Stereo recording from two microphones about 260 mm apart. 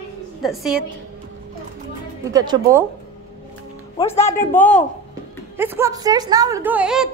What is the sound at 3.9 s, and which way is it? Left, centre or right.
Speech, left.